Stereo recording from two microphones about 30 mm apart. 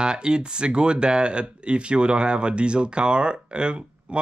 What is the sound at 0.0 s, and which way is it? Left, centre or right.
Speech, right.